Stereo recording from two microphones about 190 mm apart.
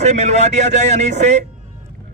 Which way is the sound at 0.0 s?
35° right (ahead or behind).